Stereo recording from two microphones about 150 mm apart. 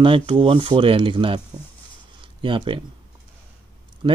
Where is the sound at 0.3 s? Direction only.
35° right (ahead or behind).